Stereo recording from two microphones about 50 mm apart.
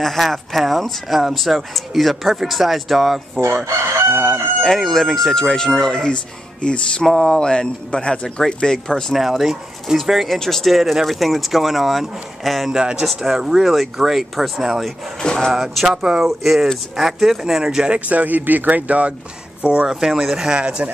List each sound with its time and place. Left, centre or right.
0.0 s speech: centre
4.2 s speech: centre
6.6 s music: centre
7.1 s speech: centre
7.3 s speech: centre
9.1 s speech: centre
12.7 s speech: centre
13.0 s speech: centre
15.2 s speech: centre
15.5 s speech: centre
17.9 s speech: right; by 20.5 s centre
20.5 s speech: centre